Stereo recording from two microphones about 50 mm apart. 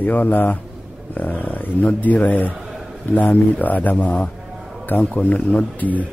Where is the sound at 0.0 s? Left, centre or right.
Left.